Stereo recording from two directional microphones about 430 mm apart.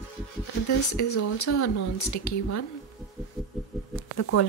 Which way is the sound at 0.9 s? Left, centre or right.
Left.